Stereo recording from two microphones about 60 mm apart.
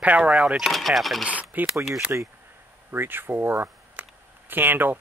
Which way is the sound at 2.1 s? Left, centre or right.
Right.